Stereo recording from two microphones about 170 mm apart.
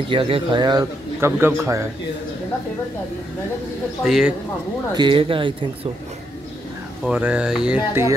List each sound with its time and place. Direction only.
0.1 s a man's voice: 30° right (ahead or behind); by 1.9 s 15° right (ahead or behind)
4.0 s speech: 5° right (ahead or behind)
4.9 s a man's voice: 30° right (ahead or behind)
7.1 s speech: 5° right (ahead or behind)